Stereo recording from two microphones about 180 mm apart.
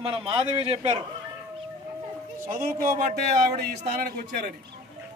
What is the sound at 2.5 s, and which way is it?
Speech, 45° right (ahead or behind).